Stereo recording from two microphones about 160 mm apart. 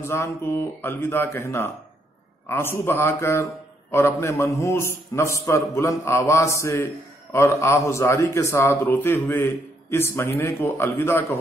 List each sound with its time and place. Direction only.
0.0 s a man's voice: 15° left (ahead or behind)